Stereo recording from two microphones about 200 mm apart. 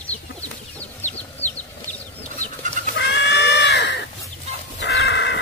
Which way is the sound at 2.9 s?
60° left (ahead or behind).